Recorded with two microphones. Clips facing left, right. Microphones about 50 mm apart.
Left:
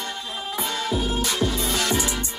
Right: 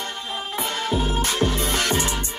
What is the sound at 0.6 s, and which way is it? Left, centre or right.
Music, right.